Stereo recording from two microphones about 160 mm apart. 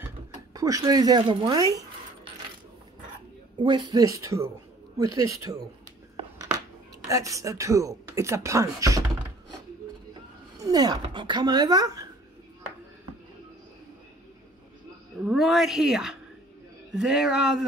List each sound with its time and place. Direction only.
0.3 s a sound: 20° right (ahead or behind)
1.3 s zipper: 30° right (ahead or behind)
3.5 s speech: 30° right (ahead or behind)
7.1 s speech: 20° right (ahead or behind)
10.6 s speech: 25° right (ahead or behind)
15.1 s speech: 5° right (ahead or behind)